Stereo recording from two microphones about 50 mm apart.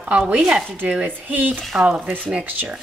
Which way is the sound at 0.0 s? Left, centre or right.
Right.